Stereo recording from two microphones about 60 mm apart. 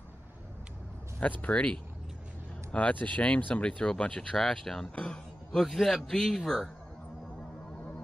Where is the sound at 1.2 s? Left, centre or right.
Left.